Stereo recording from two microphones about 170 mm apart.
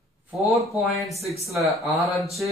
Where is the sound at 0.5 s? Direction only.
Centre (ahead or behind).